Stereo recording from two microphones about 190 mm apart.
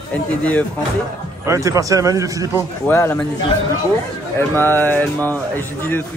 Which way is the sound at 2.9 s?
15° left (ahead or behind).